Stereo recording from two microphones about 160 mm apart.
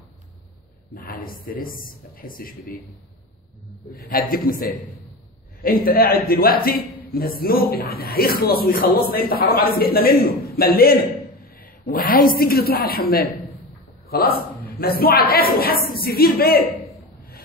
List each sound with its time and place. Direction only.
0.9 s speech: 65° left (ahead or behind)
3.9 s a man's voice: 70° left (ahead or behind)
14.0 s a man's voice: 75° left (ahead or behind)